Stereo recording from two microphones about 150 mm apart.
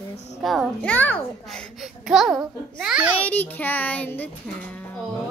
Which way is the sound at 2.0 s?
5° right (ahead or behind).